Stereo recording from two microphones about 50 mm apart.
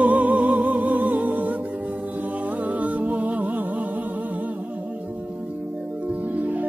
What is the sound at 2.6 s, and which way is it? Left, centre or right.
Music, right.